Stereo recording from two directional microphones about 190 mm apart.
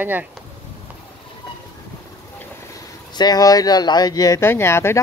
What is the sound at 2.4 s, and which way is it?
Speech, 20° left (ahead or behind).